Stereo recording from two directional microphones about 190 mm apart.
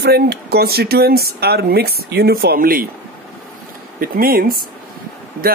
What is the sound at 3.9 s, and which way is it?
Speech, 50° right (ahead or behind).